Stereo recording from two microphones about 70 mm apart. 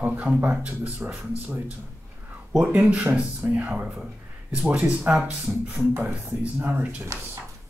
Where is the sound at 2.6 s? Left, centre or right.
Centre.